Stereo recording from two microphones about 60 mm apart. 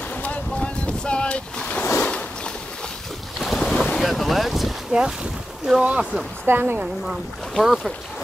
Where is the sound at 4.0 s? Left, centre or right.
Centre.